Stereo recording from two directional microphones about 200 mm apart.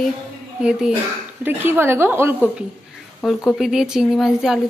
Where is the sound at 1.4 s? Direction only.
10° right (ahead or behind).